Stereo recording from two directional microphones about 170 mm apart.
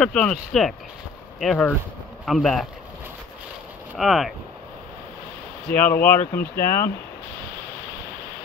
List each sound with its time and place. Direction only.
0.0 s speech: 5° left (ahead or behind)
3.9 s speech: centre (ahead or behind)
5.7 s speech: 10° left (ahead or behind)
6.4 s speech: 60° left (ahead or behind)